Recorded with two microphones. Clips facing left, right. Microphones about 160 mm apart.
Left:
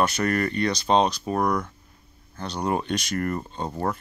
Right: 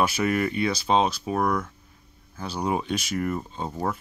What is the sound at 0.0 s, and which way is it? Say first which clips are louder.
Speech: even; 5° right (ahead or behind).